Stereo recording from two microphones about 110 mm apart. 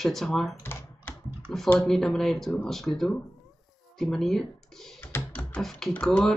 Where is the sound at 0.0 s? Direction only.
5° left (ahead or behind).